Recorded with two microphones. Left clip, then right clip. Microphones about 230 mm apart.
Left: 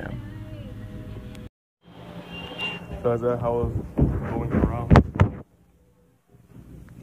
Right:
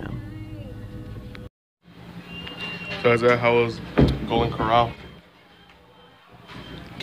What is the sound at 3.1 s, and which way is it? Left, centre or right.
Speech, right.